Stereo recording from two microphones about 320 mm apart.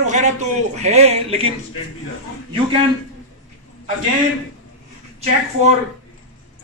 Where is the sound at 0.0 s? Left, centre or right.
Right.